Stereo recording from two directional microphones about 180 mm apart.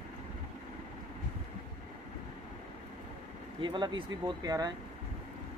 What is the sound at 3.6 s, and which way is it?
Speech, 25° right (ahead or behind).